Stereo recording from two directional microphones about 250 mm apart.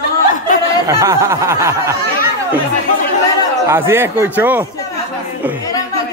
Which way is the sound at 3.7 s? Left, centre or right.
Centre.